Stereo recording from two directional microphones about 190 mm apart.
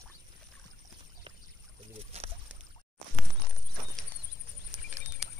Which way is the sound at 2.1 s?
35° right (ahead or behind).